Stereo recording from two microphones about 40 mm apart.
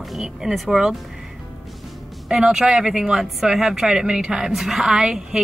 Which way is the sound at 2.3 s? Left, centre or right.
Centre.